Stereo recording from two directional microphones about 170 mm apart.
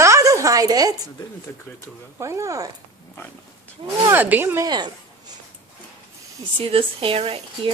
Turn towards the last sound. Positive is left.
turn(degrees=-35)  # may be behind; listen again after turning